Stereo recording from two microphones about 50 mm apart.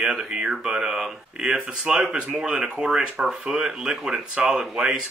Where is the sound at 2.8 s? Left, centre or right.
Centre.